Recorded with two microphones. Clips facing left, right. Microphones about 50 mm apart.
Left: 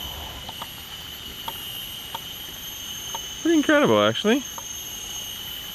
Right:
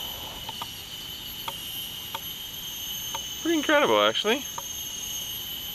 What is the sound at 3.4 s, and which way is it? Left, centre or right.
Speech, centre.